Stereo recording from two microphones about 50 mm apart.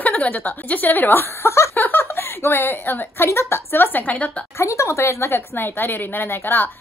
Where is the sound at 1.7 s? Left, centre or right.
Left.